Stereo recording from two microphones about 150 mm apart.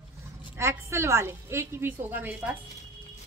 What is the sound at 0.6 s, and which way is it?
A woman's voice, 15° right (ahead or behind).